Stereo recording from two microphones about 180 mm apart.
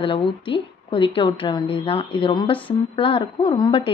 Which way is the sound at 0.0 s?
30° left (ahead or behind).